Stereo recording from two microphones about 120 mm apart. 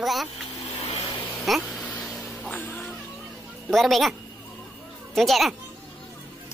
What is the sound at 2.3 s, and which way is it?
Music, 15° left (ahead or behind).